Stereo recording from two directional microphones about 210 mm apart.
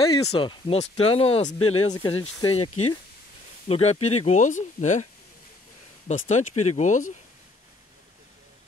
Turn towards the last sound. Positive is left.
turn(degrees=35)  # may be behind; listen again after turning